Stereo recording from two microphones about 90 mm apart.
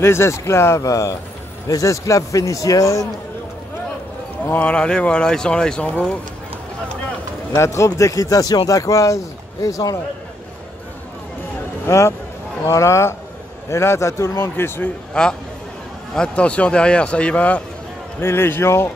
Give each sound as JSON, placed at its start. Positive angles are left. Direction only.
{"t": 0.0, "sound": "a man's voice", "side_deg": 30}
{"t": 4.6, "sound": "speech", "side_deg": 10}
{"t": 7.5, "sound": "a man's voice", "side_deg": 35}
{"t": 11.8, "sound": "a man's voice", "side_deg": 35}
{"t": 15.2, "sound": "speech", "side_deg": 10}
{"t": 18.2, "sound": "speech", "side_deg": 25}